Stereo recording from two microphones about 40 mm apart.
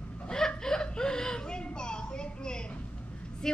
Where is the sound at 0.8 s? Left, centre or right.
Centre.